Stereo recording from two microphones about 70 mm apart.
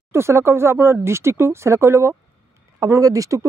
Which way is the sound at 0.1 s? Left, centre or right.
Right.